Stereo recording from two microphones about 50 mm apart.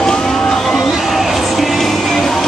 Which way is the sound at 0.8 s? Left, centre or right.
Centre.